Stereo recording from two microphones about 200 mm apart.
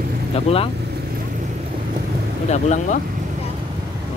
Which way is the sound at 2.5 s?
35° left (ahead or behind).